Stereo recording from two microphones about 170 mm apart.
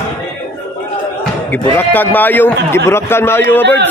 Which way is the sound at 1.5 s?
10° left (ahead or behind).